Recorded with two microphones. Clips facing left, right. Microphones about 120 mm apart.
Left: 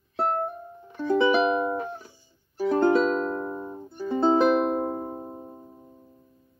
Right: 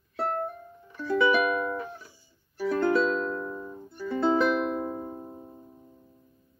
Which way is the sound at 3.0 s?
45° left (ahead or behind).